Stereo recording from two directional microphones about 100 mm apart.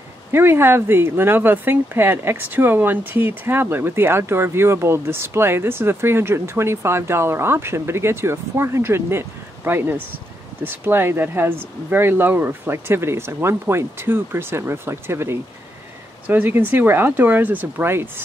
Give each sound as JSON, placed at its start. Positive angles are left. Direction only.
{"t": 0.3, "sound": "speech", "side_deg": -25}